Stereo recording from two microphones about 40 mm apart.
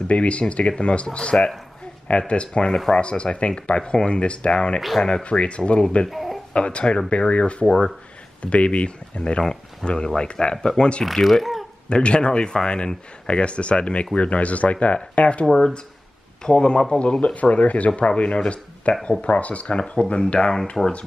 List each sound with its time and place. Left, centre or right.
0.1 s speech: left
6.0 s a sound: centre
6.5 s speech: left
7.6 s speech: centre
8.4 s speech: left; by 11.6 s centre
11.9 s speech: left
15.5 s speech: centre